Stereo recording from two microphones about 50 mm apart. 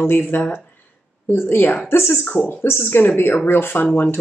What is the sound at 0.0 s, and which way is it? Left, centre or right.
A woman's voice, left.